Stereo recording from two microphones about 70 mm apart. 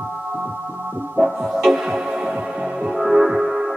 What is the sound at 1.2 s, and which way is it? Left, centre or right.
Music, centre.